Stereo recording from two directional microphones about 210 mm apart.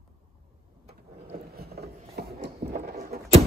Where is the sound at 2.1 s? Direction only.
50° right (ahead or behind).